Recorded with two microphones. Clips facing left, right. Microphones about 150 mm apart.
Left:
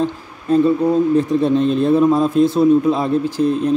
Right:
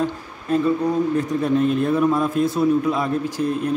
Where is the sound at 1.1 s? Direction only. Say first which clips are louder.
Left 5 dB; 25° left (ahead or behind).